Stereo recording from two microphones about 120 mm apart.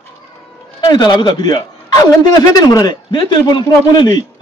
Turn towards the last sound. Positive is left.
turn(degrees=40)  # may be behind; listen again after turning